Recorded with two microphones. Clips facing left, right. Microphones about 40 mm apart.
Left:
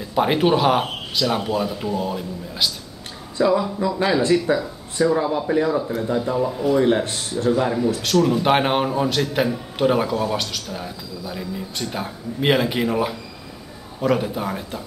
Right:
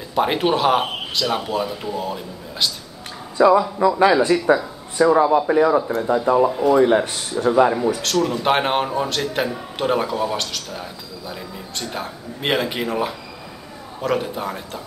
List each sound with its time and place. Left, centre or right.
0.1 s speech: centre
3.3 s speech: right
6.8 s speech: centre
8.0 s speech: centre